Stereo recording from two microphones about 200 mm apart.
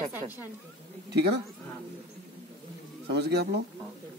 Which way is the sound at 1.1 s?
55° right (ahead or behind).